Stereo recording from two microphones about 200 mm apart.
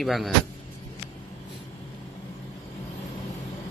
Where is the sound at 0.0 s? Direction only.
Centre (ahead or behind).